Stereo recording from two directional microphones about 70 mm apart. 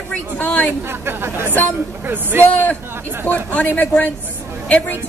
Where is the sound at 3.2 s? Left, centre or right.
Left.